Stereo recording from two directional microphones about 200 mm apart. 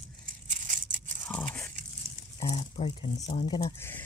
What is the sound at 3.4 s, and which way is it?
Speech, 20° left (ahead or behind).